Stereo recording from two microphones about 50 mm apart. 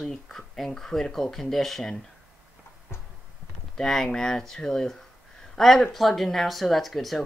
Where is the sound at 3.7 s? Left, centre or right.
Centre.